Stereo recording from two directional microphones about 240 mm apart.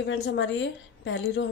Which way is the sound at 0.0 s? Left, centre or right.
Left.